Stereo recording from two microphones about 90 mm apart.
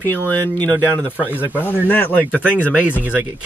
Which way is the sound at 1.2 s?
15° right (ahead or behind).